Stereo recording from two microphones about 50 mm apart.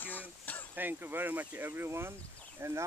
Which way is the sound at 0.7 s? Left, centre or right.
Right.